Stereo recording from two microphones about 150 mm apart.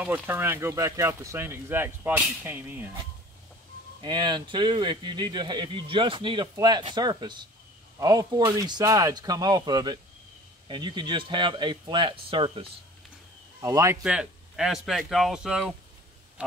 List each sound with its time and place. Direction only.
0.0 s speech: 15° right (ahead or behind)
4.0 s speech: 30° right (ahead or behind)
13.6 s speech: 20° right (ahead or behind)
14.0 s speech: 5° right (ahead or behind)